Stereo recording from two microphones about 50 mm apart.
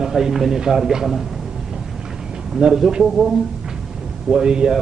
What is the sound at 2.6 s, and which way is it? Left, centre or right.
Speech, centre.